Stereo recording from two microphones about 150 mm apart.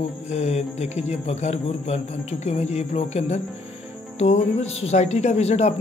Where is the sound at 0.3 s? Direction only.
45° left (ahead or behind).